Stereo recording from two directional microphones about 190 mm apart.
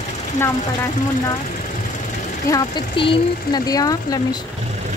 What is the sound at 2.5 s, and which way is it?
Speech, 20° left (ahead or behind).